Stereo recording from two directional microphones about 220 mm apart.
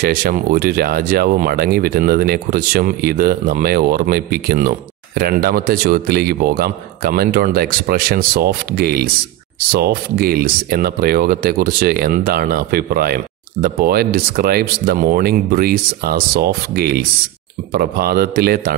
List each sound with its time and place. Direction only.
0.0 s speech: 40° right (ahead or behind)